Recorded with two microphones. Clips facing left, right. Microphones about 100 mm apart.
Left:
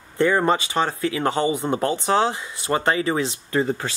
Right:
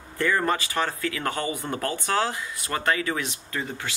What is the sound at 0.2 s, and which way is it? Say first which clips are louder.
Speech: left 5 dB; 25° left (ahead or behind).